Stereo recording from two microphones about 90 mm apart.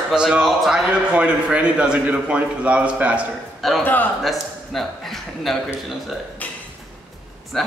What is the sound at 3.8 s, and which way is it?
Speech, 20° left (ahead or behind).